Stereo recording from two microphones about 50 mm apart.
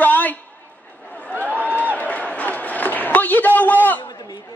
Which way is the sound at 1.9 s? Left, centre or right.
Left.